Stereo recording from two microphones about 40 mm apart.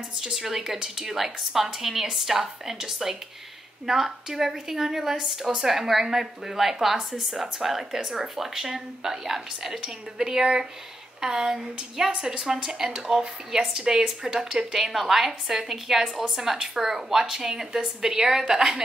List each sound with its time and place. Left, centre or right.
0.1 s a woman's voice: centre